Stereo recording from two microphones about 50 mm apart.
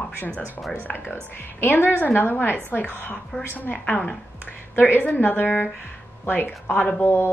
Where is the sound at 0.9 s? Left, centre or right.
Left.